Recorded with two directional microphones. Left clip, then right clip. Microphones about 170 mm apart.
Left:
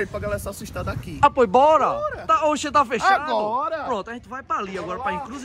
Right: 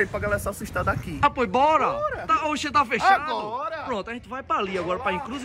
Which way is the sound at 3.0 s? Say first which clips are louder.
Left 1 dB; 10° left (ahead or behind).